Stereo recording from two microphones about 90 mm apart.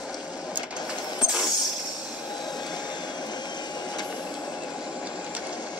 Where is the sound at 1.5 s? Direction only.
50° left (ahead or behind).